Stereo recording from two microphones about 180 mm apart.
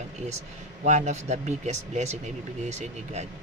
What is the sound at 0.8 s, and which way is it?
Speech, 40° right (ahead or behind).